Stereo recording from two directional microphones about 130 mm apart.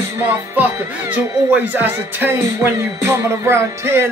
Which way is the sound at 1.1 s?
10° right (ahead or behind).